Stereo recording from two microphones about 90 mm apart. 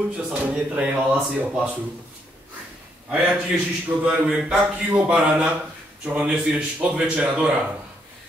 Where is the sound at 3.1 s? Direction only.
15° right (ahead or behind).